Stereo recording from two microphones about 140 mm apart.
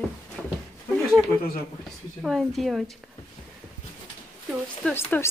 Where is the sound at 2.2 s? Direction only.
Centre (ahead or behind).